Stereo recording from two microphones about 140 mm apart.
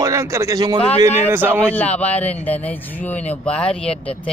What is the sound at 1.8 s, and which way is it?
Speech, 10° left (ahead or behind).